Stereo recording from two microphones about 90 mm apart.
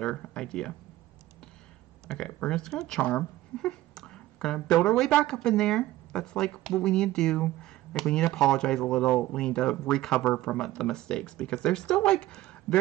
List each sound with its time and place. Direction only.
0.0 s speech: 10° left (ahead or behind)
2.0 s speech: 10° left (ahead or behind)
3.0 s speech: 20° left (ahead or behind)
3.5 s speech: 5° left (ahead or behind)